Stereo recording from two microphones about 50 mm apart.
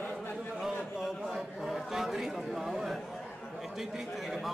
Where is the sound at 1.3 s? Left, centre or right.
Centre.